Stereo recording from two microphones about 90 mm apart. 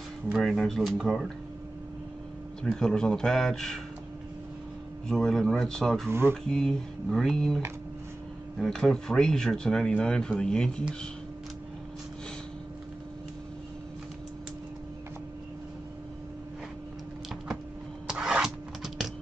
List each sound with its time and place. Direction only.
0.3 s speech: centre (ahead or behind)
2.6 s speech: 5° left (ahead or behind)
5.0 s speech: 5° left (ahead or behind)
6.0 s speech: 25° right (ahead or behind)
6.4 s speech: 5° left (ahead or behind)
18.0 s a sound: 10° right (ahead or behind)